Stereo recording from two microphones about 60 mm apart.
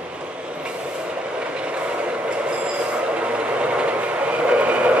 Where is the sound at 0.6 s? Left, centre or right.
Centre.